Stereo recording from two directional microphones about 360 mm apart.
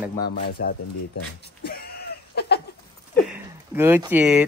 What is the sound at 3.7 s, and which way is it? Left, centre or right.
Speech, centre.